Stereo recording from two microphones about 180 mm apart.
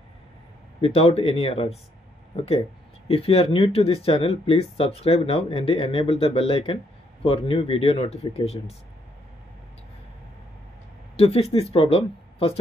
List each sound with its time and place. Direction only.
0.7 s speech: 35° left (ahead or behind)
11.1 s speech: 35° left (ahead or behind)